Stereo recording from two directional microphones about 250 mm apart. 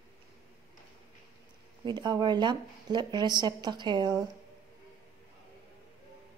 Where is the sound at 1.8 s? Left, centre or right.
Centre.